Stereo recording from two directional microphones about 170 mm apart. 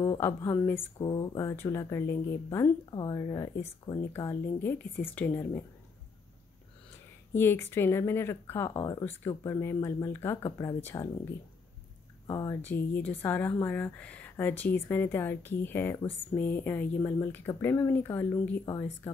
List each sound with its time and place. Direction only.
0.0 s speech: 20° left (ahead or behind)
7.3 s speech: 15° left (ahead or behind)
12.3 s speech: 20° left (ahead or behind)